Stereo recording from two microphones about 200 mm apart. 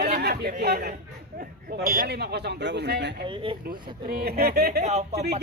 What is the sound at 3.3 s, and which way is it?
Speech, 25° right (ahead or behind).